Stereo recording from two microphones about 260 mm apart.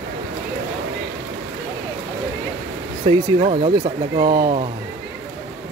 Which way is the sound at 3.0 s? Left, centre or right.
Right.